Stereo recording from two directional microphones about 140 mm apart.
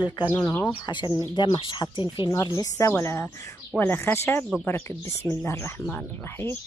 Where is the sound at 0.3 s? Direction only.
15° left (ahead or behind).